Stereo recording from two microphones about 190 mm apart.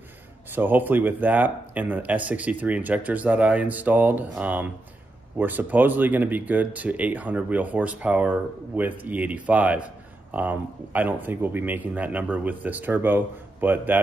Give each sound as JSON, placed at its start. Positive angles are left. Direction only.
{"t": 0.5, "sound": "speech", "side_deg": -10}